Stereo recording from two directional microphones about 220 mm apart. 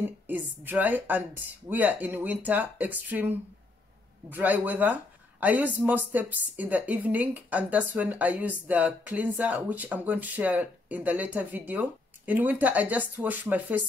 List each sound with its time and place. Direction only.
0.0 s speech: 10° right (ahead or behind)